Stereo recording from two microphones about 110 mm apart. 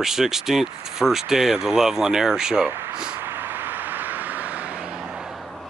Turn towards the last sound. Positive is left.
turn(degrees=0)  # may be behind; listen again after turning